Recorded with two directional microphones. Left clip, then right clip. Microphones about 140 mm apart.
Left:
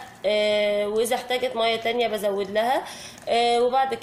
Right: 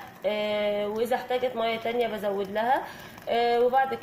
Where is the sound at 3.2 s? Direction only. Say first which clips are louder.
Left 3 dB; 20° left (ahead or behind).